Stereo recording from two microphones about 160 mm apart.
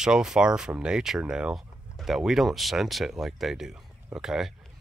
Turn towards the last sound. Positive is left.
turn(degrees=-5)  # may be behind; listen again after turning